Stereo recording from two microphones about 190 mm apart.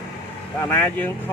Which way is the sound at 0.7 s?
10° left (ahead or behind).